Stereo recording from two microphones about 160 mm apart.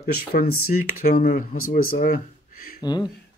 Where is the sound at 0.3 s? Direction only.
70° left (ahead or behind).